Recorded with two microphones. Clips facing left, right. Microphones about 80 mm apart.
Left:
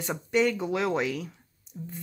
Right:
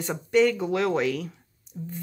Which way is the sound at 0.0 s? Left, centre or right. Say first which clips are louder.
Right 4 dB; centre.